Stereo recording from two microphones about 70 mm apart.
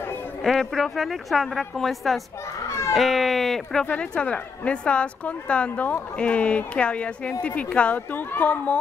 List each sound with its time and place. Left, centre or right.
0.4 s speech: centre
3.8 s speech: centre